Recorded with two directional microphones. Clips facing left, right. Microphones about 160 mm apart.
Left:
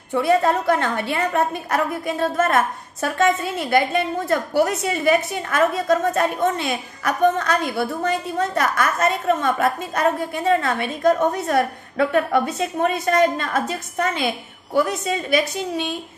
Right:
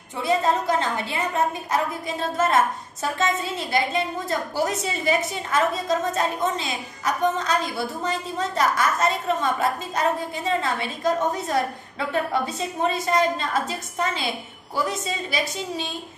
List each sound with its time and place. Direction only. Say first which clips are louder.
0.1 s a woman's voice: left 4 dB; 60° left (ahead or behind)